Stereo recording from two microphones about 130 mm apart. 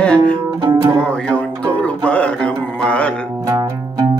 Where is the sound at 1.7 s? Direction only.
10° left (ahead or behind).